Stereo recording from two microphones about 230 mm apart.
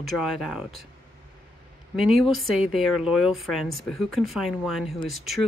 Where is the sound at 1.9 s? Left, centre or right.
Centre.